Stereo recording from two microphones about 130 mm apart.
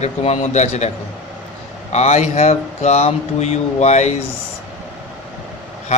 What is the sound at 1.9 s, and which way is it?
Speech, 60° left (ahead or behind).